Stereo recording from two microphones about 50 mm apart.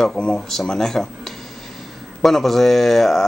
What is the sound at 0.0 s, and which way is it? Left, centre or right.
Speech, centre.